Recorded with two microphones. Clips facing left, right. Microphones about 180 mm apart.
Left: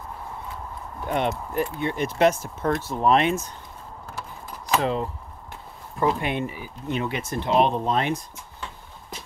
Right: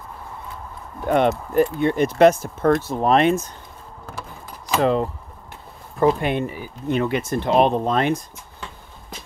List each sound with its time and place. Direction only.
1.0 s speech: 50° right (ahead or behind)
4.8 s speech: 55° right (ahead or behind)
5.9 s speech: 40° right (ahead or behind)